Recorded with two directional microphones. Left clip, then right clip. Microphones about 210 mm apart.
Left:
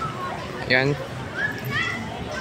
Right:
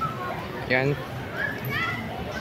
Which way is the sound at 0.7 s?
5° left (ahead or behind).